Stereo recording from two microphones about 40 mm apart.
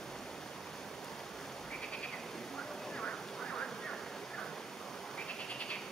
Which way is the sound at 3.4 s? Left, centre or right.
Left.